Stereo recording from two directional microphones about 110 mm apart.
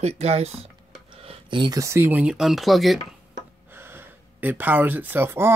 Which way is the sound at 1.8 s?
25° right (ahead or behind).